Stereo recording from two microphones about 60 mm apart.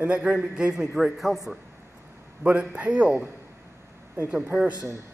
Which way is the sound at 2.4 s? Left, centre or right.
Right.